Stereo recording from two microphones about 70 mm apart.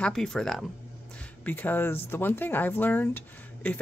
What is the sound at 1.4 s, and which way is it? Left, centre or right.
A woman's voice, left.